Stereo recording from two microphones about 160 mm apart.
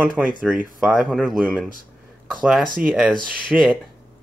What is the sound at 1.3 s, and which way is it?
Speech, 10° right (ahead or behind).